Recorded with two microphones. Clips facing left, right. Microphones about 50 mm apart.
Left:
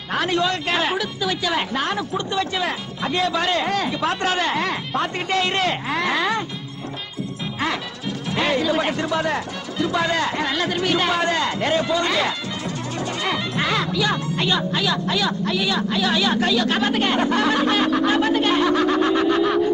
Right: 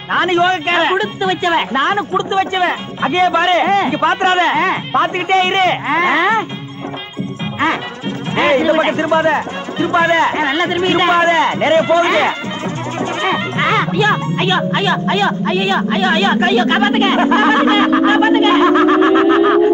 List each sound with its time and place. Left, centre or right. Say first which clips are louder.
0.1 s speech: right 8 dB; right
8.4 s speech: right 8 dB; right